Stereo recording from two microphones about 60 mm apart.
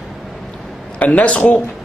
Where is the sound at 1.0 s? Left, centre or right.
Left.